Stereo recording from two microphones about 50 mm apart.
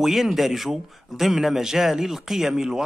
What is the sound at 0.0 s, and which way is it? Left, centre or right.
A man's voice, centre.